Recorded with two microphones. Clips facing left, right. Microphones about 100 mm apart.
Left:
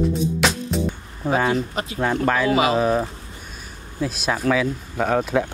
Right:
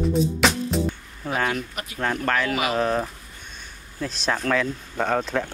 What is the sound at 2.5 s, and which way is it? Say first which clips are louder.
Speech: left 6 dB; 25° left (ahead or behind).